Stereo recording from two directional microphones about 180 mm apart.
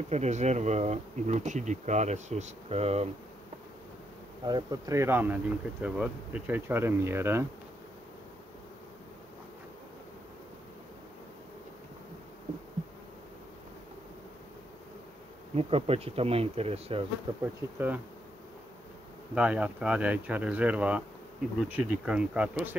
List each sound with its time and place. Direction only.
0.1 s bee: 40° right (ahead or behind)
4.5 s speech: 20° right (ahead or behind)
15.5 s bee: 35° right (ahead or behind)
17.3 s speech: 30° right (ahead or behind)
17.7 s speech: 10° right (ahead or behind)
19.3 s speech: 5° right (ahead or behind)